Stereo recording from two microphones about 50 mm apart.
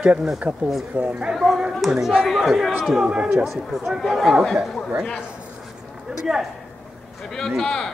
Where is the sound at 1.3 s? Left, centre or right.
Centre.